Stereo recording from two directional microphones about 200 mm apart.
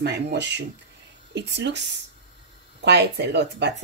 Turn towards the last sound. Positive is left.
turn(degrees=-55)  # may be behind; listen again after turning